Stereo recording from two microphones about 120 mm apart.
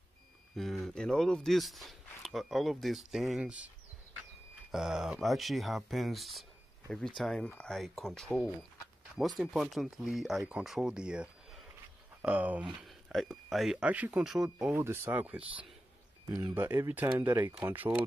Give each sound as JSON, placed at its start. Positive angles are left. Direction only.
{"t": 0.6, "sound": "speech", "side_deg": 0}
{"t": 12.6, "sound": "speech", "side_deg": 0}
{"t": 14.8, "sound": "speech", "side_deg": -20}
{"t": 16.5, "sound": "speech", "side_deg": -20}
{"t": 17.5, "sound": "speech", "side_deg": -30}